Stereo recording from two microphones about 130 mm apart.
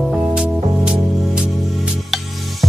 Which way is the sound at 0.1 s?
5° right (ahead or behind).